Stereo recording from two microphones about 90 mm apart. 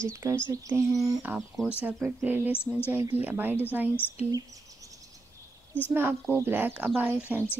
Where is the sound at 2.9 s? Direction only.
25° right (ahead or behind).